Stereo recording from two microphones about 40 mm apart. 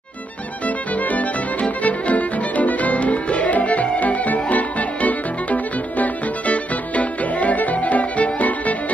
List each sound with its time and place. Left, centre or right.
0.7 s music: left